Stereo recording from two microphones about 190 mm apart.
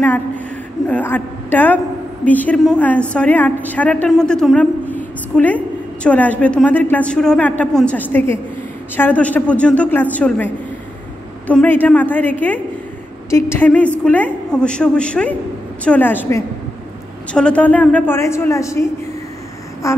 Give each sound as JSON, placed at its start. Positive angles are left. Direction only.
{"t": 0.8, "sound": "a woman's voice", "side_deg": 10}